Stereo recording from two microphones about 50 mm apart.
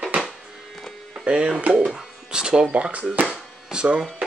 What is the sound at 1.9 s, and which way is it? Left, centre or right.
Music, centre.